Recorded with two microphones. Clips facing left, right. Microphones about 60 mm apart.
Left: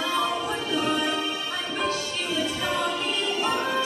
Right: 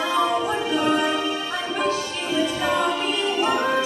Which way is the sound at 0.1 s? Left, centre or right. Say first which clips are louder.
Right 6 dB; centre.